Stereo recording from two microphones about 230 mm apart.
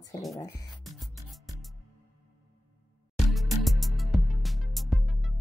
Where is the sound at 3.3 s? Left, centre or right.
Centre.